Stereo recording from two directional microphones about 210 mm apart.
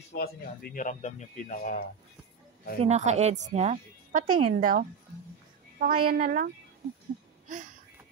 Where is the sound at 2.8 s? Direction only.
30° right (ahead or behind).